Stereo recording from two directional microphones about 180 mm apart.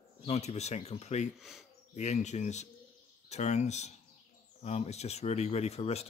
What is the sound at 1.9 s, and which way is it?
Speech, 40° left (ahead or behind).